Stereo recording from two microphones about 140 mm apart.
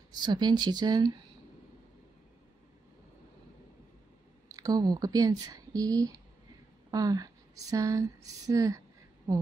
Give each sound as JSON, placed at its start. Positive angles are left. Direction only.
{"t": 0.1, "sound": "speech", "side_deg": -30}
{"t": 4.5, "sound": "speech", "side_deg": -25}